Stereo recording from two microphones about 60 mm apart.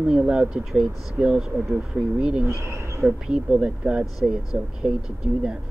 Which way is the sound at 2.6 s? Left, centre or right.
Right.